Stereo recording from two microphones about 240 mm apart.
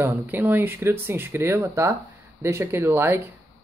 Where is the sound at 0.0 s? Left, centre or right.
Centre.